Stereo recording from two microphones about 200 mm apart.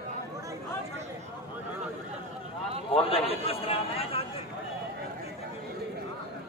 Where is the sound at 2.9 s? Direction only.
30° left (ahead or behind).